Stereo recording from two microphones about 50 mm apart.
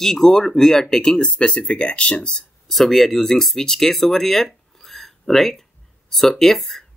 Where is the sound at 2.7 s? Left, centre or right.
Centre.